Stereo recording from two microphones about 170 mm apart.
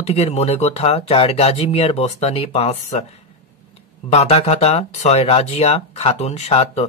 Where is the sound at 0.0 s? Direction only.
35° left (ahead or behind).